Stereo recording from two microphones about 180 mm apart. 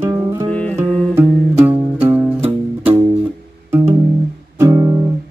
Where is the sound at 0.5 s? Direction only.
5° left (ahead or behind).